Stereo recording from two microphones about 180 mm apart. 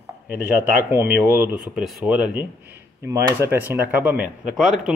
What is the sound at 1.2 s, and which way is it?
Speech, 15° right (ahead or behind).